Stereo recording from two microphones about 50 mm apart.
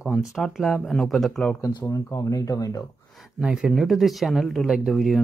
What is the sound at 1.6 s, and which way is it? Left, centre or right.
Speech, left.